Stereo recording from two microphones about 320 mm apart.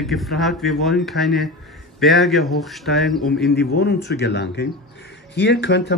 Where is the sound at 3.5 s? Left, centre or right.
Left.